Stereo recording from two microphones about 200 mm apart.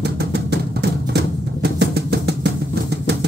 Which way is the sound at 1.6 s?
55° right (ahead or behind).